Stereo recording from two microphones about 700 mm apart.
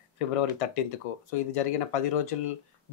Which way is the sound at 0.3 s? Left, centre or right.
Left.